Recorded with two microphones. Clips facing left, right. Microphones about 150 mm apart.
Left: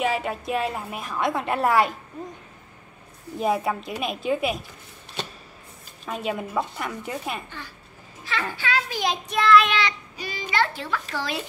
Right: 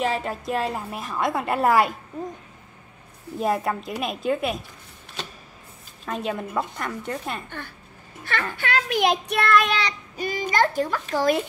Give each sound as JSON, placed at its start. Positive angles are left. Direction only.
{"t": 0.0, "sound": "a woman's voice", "side_deg": 5}
{"t": 3.3, "sound": "a woman's voice", "side_deg": 0}
{"t": 6.0, "sound": "a woman's voice", "side_deg": 5}
{"t": 7.4, "sound": "speech", "side_deg": -55}
{"t": 8.5, "sound": "child singing", "side_deg": -60}